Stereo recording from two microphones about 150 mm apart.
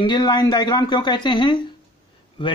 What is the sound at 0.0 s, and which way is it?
Speech, 30° left (ahead or behind).